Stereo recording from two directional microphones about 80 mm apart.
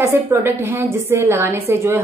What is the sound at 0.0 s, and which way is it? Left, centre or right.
A woman's voice, right.